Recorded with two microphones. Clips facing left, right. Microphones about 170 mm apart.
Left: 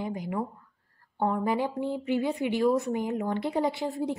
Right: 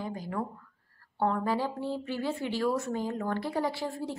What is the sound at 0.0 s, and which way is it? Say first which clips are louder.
A woman's voice: left 3 dB; 20° left (ahead or behind).